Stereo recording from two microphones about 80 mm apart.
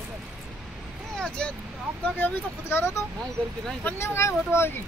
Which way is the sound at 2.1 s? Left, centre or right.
Left.